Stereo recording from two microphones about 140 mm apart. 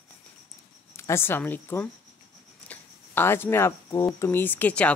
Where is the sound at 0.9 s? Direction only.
20° left (ahead or behind).